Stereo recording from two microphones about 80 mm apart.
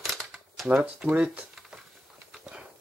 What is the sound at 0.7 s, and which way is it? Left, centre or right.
Speech, centre.